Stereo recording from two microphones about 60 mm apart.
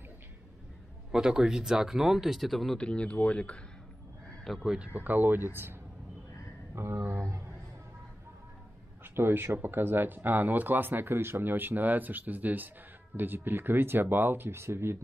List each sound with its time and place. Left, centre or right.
1.1 s speech: centre
2.8 s speech: centre
4.6 s speech: centre
4.9 s speech: right
9.0 s speech: right